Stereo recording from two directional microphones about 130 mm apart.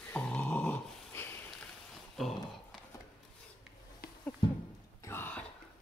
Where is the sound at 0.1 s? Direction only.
10° left (ahead or behind).